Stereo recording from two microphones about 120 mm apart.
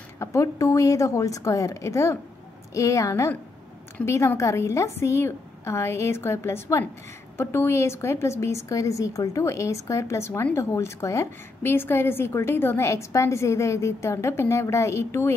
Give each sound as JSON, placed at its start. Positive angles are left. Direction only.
{"t": 0.2, "sound": "a woman's voice", "side_deg": 25}